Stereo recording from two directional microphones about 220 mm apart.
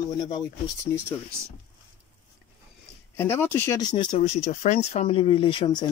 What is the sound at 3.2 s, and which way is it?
Speech, 10° left (ahead or behind).